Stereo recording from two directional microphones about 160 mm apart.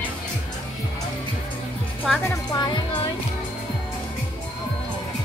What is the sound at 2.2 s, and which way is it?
Music, 25° left (ahead or behind).